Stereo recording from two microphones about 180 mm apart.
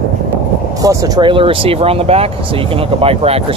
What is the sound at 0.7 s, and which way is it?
Speech, 20° right (ahead or behind).